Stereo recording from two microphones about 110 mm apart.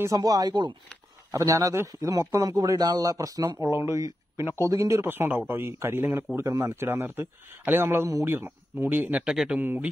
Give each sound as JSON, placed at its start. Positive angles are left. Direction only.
{"t": 0.0, "sound": "a man's voice", "side_deg": -35}
{"t": 1.3, "sound": "a man's voice", "side_deg": -30}
{"t": 5.0, "sound": "a man's voice", "side_deg": -20}
{"t": 9.6, "sound": "speech", "side_deg": -15}